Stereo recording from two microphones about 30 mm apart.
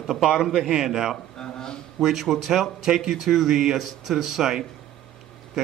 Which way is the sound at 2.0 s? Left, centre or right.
Centre.